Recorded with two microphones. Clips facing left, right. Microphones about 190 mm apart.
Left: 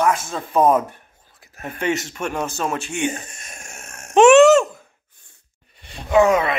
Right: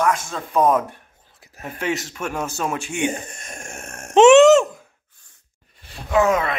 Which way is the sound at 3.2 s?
55° right (ahead or behind).